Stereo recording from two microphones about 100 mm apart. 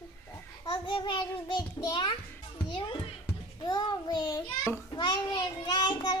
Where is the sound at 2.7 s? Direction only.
55° left (ahead or behind).